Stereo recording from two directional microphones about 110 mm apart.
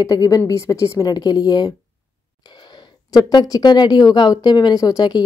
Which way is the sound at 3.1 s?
35° left (ahead or behind).